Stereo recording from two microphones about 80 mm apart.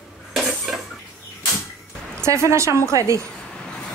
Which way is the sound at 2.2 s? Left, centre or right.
Right.